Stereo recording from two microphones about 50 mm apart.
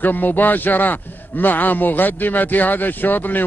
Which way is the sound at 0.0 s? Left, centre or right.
Left.